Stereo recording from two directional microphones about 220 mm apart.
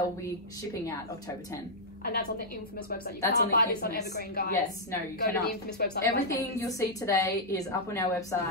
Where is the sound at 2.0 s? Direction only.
45° left (ahead or behind).